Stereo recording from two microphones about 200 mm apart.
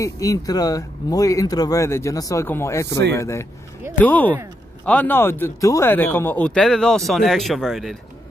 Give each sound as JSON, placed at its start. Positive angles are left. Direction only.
{"t": 0.0, "sound": "a man's voice", "side_deg": 15}